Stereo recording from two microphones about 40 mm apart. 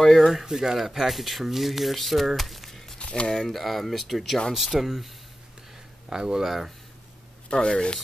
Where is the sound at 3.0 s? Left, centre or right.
Left.